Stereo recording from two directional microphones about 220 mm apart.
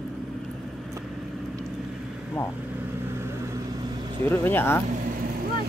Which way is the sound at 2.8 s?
10° right (ahead or behind).